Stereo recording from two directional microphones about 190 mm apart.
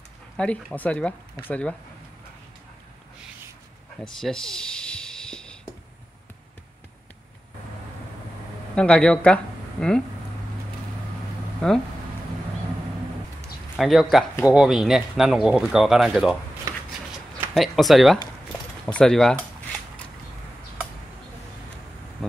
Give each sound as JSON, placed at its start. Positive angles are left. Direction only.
{"t": 0.4, "sound": "speech", "side_deg": 5}
{"t": 4.1, "sound": "a sound", "side_deg": 0}
{"t": 8.7, "sound": "speech", "side_deg": 5}
{"t": 11.6, "sound": "speech", "side_deg": 0}
{"t": 13.7, "sound": "a man's voice", "side_deg": 0}
{"t": 16.7, "sound": "a sound", "side_deg": -15}
{"t": 17.6, "sound": "speech", "side_deg": 0}